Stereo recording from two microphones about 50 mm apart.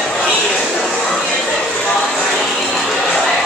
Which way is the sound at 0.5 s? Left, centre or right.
Centre.